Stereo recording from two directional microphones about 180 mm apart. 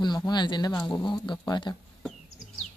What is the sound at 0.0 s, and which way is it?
Speech, 25° left (ahead or behind).